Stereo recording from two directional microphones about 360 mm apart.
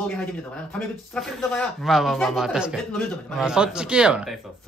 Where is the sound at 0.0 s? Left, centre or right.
Centre.